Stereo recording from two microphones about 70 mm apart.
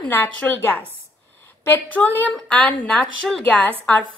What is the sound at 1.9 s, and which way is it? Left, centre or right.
A woman's voice, left.